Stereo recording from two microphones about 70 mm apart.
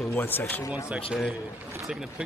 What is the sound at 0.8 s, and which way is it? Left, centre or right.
Speech, centre.